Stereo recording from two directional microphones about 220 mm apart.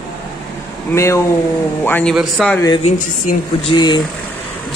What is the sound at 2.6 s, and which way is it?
Speech, 20° left (ahead or behind).